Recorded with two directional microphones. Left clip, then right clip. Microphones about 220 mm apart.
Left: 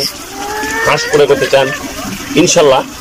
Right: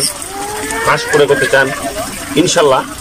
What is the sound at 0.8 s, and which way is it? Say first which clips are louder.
Speech: left 1 dB; 10° left (ahead or behind).